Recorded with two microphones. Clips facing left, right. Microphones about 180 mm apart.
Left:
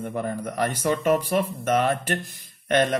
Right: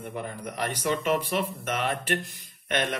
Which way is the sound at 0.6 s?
45° left (ahead or behind).